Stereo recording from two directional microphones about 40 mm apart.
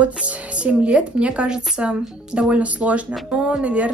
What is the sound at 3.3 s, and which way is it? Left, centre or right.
Speech, centre.